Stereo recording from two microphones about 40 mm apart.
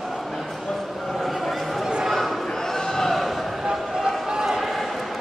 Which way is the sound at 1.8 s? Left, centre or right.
Centre.